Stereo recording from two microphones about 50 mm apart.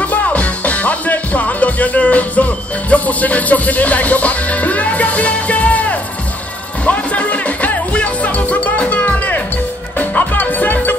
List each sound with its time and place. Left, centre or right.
0.0 s music: left